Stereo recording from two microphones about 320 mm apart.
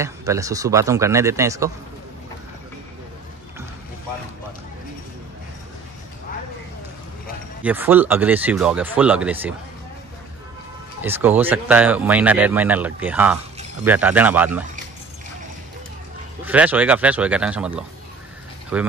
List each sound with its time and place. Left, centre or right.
0.0 s speech: centre
7.6 s speech: centre
11.0 s speech: centre
16.4 s speech: centre